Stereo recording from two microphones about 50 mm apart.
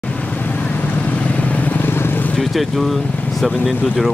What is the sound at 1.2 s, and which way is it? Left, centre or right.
Vehicle, left.